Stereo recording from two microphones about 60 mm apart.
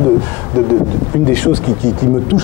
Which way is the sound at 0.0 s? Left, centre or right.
Left.